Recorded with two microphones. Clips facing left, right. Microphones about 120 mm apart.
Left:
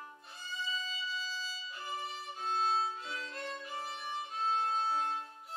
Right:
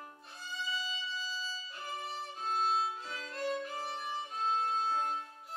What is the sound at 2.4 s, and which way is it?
Violin, 10° right (ahead or behind).